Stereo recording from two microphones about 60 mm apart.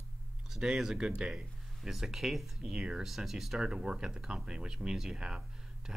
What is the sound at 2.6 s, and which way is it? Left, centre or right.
Speech, centre.